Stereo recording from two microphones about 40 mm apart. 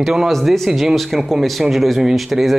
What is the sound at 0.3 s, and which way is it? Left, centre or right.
Speech, centre.